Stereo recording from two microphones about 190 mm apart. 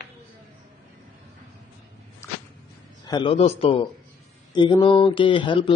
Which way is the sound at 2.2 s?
15° left (ahead or behind).